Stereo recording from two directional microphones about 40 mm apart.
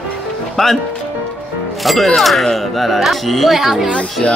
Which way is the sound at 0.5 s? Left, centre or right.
Centre.